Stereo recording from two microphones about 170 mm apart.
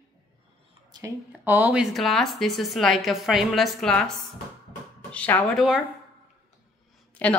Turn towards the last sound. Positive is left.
turn(degrees=10)  # may be behind; listen again after turning